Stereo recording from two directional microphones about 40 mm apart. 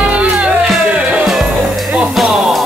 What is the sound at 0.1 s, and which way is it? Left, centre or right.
Music, right.